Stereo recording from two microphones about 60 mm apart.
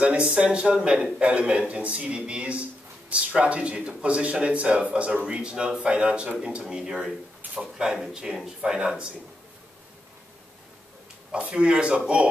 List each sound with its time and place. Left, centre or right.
0.0 s speech: centre
6.6 s speech: centre
11.3 s speech: centre